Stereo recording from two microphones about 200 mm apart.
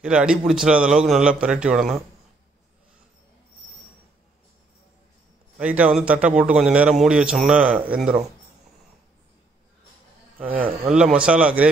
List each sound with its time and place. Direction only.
0.0 s a man's voice: 5° right (ahead or behind)
5.6 s a man's voice: 5° right (ahead or behind)
10.4 s a man's voice: 5° right (ahead or behind)